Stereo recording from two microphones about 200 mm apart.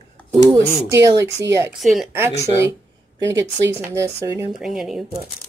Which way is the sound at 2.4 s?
15° right (ahead or behind).